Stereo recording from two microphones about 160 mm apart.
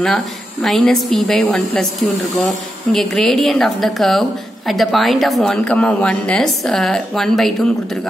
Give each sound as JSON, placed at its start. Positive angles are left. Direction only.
{"t": 0.0, "sound": "a woman's voice", "side_deg": 0}